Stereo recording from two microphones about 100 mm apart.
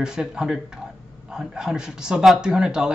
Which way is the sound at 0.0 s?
5° right (ahead or behind).